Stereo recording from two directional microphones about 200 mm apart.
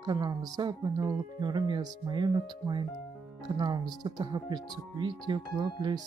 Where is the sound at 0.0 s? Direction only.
20° right (ahead or behind).